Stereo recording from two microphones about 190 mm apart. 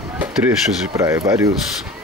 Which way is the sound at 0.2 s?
5° right (ahead or behind).